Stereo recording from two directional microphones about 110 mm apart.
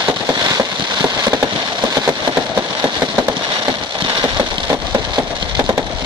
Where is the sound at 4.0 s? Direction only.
35° right (ahead or behind).